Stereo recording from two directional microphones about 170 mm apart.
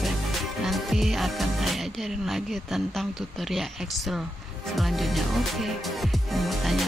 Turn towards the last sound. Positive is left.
turn(degrees=0)  # may be behind; listen again after turning